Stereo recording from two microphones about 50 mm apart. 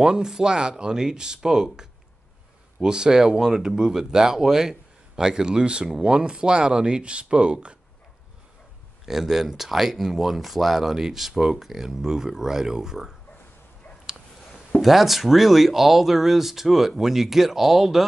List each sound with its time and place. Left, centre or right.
0.0 s speech: centre
9.0 s speech: centre
14.8 s speech: centre